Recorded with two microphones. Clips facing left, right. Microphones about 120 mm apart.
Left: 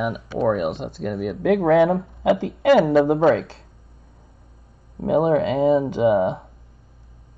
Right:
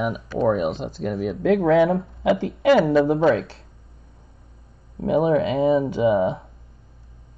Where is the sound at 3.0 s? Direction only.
50° left (ahead or behind).